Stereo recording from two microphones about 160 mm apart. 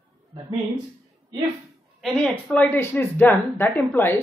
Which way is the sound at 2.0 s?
5° left (ahead or behind).